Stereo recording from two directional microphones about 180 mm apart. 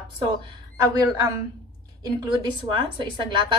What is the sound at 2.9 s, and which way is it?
Speech, 25° right (ahead or behind).